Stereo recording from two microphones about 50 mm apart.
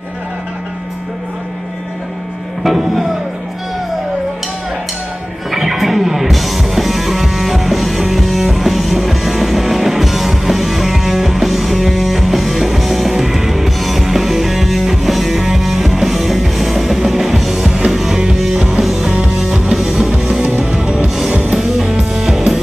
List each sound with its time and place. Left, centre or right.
2.6 s music: centre
5.5 s music: centre
17.9 s music: centre; by 21.5 s right
21.5 s music: centre